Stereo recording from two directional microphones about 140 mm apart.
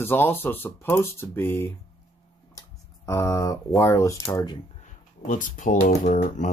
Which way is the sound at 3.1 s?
20° left (ahead or behind).